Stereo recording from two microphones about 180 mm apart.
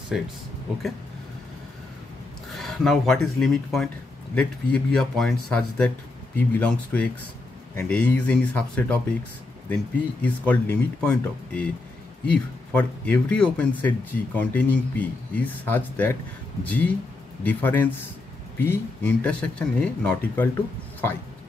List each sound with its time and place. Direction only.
0.1 s speech: centre (ahead or behind)
2.5 s speech: centre (ahead or behind)
10.2 s speech: 10° left (ahead or behind)